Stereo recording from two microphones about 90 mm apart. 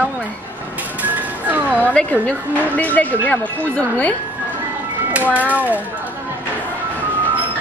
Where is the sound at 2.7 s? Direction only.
15° left (ahead or behind).